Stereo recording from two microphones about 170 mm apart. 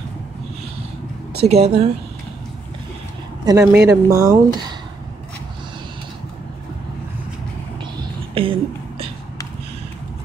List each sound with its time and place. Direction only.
1.4 s a woman's voice: 40° right (ahead or behind)
3.4 s speech: 20° right (ahead or behind)
8.4 s a sound: 30° right (ahead or behind)